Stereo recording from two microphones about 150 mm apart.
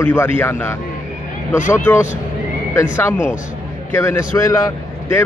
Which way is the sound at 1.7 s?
10° left (ahead or behind).